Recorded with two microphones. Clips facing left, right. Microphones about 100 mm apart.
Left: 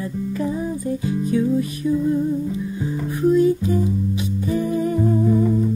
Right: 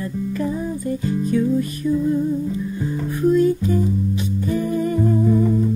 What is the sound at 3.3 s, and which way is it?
Music, 10° left (ahead or behind).